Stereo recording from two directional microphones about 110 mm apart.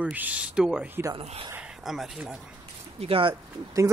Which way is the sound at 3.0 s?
55° right (ahead or behind).